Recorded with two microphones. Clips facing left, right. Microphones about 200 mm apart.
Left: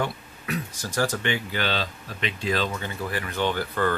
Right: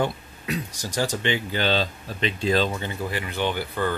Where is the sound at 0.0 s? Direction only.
20° right (ahead or behind).